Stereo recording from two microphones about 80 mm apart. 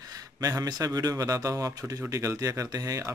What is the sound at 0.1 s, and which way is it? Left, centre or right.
A man's voice, right.